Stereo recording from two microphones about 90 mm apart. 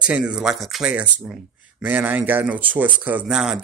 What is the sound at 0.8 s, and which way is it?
Speech, 10° right (ahead or behind).